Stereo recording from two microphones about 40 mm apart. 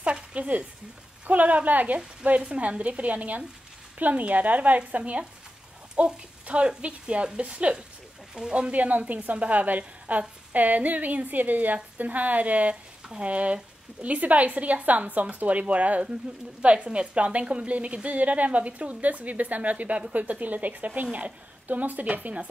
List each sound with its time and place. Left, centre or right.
0.0 s a woman's voice: right
2.4 s a woman's voice: right
8.4 s speech: centre
8.7 s a woman's voice: right